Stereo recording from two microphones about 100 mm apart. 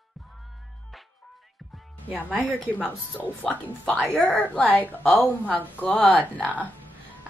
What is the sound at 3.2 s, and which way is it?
Speech, 15° left (ahead or behind).